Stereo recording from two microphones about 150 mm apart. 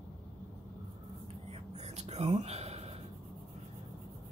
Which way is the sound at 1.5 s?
45° right (ahead or behind).